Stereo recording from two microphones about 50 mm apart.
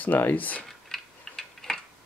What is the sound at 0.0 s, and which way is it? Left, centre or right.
Speech, left.